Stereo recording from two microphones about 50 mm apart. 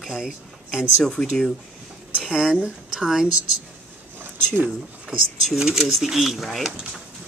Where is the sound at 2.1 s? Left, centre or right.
Right.